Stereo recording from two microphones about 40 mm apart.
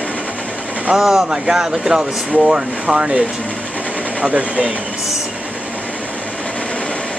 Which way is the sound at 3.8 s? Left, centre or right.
Right.